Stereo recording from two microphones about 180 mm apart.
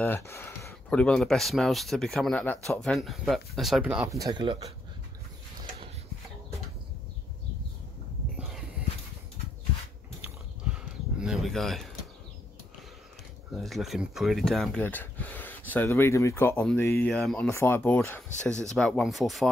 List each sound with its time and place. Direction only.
0.0 s speech: 10° left (ahead or behind); by 4.1 s 5° right (ahead or behind)
4.1 s speech: 20° right (ahead or behind)
10.2 s a sound: 5° right (ahead or behind)
13.6 s speech: centre (ahead or behind); by 17.1 s 15° left (ahead or behind)
17.1 s speech: 5° left (ahead or behind)